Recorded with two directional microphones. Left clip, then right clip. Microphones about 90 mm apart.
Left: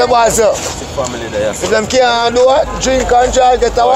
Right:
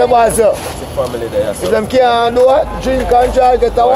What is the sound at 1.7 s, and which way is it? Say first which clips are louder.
Speech: even; 35° right (ahead or behind).